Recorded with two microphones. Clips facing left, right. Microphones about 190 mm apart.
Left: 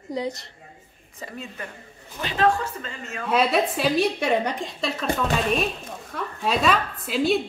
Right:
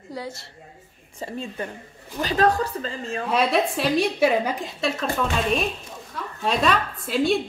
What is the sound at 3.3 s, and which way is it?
A woman's voice, centre (ahead or behind).